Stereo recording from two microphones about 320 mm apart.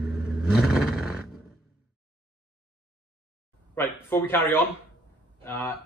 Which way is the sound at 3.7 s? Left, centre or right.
Centre.